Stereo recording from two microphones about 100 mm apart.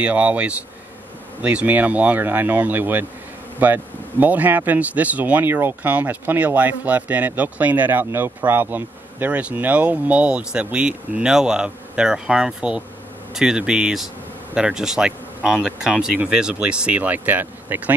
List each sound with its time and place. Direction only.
0.0 s speech: 15° right (ahead or behind)